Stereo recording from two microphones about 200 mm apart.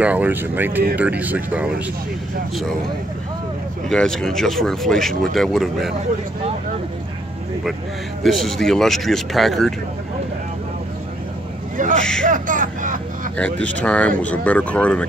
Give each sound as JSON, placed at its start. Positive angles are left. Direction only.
{"t": 0.0, "sound": "speech", "side_deg": -10}
{"t": 3.9, "sound": "speech", "side_deg": 5}
{"t": 8.2, "sound": "speech", "side_deg": 0}
{"t": 11.7, "sound": "vehicle", "side_deg": -40}
{"t": 13.4, "sound": "speech", "side_deg": 5}